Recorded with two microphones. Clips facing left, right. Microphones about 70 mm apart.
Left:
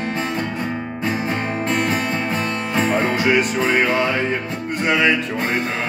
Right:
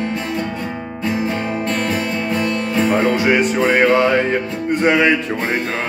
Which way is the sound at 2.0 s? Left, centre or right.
Left.